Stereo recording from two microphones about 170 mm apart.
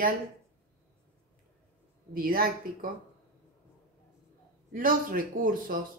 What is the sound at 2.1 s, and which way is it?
Speech, 60° right (ahead or behind).